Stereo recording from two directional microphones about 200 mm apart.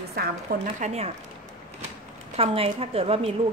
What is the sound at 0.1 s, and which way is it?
Speech, 50° right (ahead or behind).